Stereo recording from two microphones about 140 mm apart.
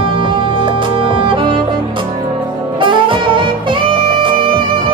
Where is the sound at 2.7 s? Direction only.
35° right (ahead or behind).